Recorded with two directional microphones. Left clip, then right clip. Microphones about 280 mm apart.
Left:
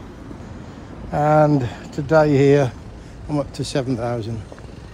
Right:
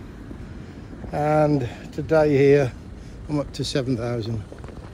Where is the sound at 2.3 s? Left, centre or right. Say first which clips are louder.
Left 1 dB; centre.